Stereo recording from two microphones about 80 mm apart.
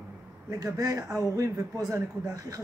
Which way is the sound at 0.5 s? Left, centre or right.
Right.